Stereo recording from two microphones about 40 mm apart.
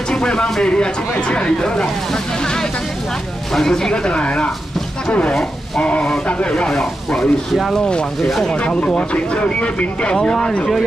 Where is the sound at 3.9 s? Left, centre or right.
Left.